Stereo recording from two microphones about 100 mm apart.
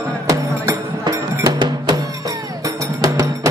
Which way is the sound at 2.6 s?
35° right (ahead or behind).